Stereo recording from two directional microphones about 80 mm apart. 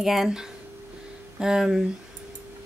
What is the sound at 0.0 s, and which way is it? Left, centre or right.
A woman's voice, centre.